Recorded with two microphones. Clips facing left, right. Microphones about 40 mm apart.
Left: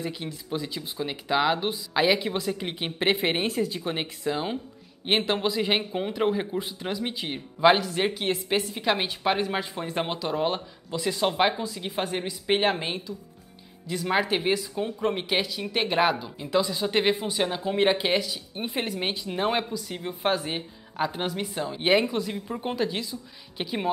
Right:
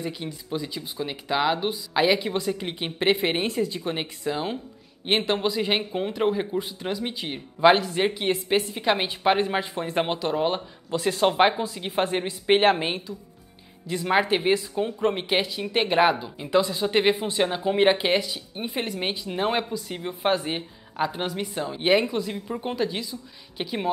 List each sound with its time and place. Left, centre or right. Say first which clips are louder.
0.0 s speech: right 1 dB; centre